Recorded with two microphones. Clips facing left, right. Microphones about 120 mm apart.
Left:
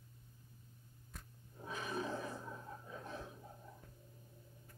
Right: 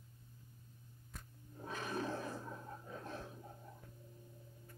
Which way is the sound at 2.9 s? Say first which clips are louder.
Right 1 dB; 10° left (ahead or behind).